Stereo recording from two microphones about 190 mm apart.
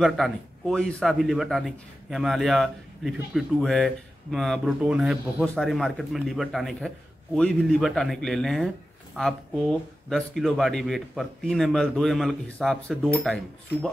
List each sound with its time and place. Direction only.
0.0 s a man's voice: centre (ahead or behind)